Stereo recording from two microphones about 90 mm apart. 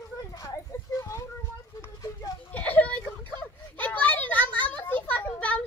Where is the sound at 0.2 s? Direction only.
45° left (ahead or behind).